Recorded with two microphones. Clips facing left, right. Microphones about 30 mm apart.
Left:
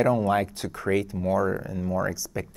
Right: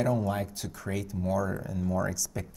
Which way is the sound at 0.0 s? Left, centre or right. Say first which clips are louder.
Left 6 dB; left.